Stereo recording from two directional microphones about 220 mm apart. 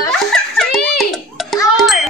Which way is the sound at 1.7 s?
Centre (ahead or behind).